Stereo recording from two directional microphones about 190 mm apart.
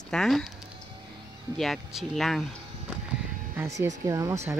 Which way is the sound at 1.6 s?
Centre (ahead or behind).